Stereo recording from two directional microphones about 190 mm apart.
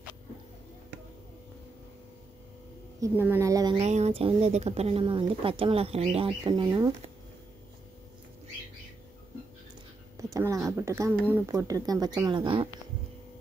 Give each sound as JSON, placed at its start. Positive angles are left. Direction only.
{"t": 3.0, "sound": "a woman's voice", "side_deg": -10}
{"t": 3.8, "sound": "speech", "side_deg": -35}
{"t": 10.1, "sound": "speech", "side_deg": -15}